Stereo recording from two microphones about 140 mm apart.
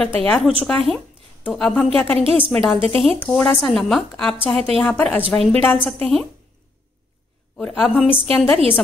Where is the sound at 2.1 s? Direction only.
40° right (ahead or behind).